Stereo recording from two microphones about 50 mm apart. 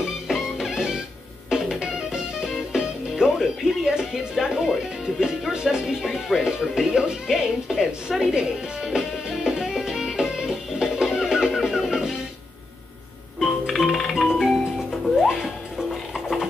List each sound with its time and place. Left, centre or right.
0.0 s music: centre
5.5 s speech: centre
11.6 s music: centre
13.4 s music: centre